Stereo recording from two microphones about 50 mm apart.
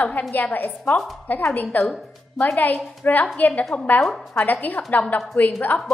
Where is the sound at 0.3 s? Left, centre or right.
Left.